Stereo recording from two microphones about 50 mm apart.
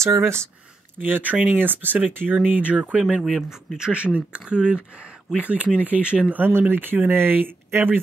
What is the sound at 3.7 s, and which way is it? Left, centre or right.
Speech, right.